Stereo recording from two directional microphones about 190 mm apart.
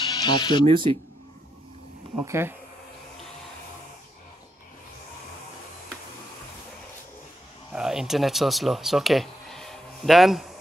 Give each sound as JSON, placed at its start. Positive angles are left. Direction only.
{"t": 0.0, "sound": "speech", "side_deg": 25}
{"t": 0.7, "sound": "speech", "side_deg": -25}
{"t": 2.1, "sound": "speech", "side_deg": -10}
{"t": 7.7, "sound": "speech", "side_deg": -5}